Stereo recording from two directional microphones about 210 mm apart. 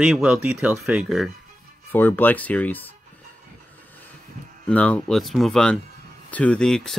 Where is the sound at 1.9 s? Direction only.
10° left (ahead or behind).